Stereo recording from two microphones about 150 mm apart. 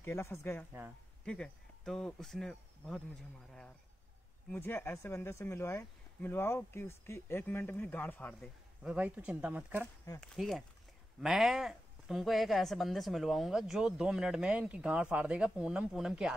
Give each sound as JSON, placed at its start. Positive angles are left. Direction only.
{"t": 0.0, "sound": "speech", "side_deg": 15}
{"t": 4.5, "sound": "speech", "side_deg": 15}
{"t": 8.4, "sound": "speech", "side_deg": -5}
{"t": 10.2, "sound": "speech", "side_deg": 0}